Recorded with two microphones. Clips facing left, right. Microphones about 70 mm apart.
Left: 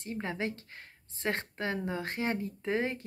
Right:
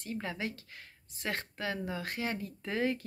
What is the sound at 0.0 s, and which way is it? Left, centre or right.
Speech, left.